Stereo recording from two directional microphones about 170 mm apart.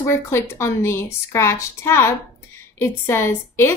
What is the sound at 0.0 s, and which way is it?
A woman's voice, 15° left (ahead or behind).